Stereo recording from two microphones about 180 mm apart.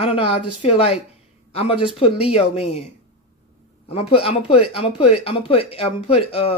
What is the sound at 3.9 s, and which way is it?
Speech, 35° left (ahead or behind).